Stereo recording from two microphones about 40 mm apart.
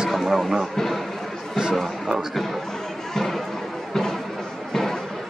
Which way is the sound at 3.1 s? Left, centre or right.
Centre.